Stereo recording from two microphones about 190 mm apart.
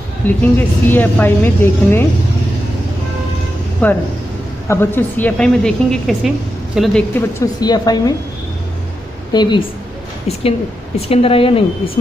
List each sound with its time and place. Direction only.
0.3 s a woman's voice: 10° left (ahead or behind)
3.8 s a woman's voice: 10° left (ahead or behind)
9.3 s speech: 25° left (ahead or behind)
11.0 s speech: 30° left (ahead or behind)